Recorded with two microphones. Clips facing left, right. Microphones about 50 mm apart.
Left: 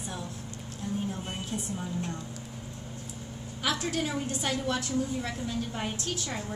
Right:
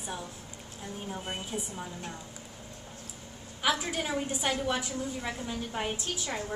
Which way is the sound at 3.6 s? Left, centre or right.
Centre.